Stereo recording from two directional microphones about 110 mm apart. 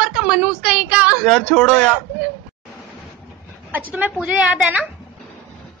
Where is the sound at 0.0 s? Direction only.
5° right (ahead or behind).